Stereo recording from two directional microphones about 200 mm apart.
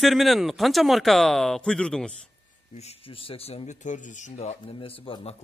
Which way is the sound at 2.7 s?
30° left (ahead or behind).